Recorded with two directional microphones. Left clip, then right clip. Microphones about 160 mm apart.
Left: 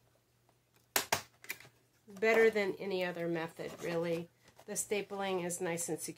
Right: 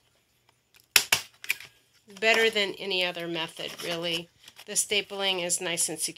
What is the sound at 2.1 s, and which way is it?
Speech, 20° right (ahead or behind).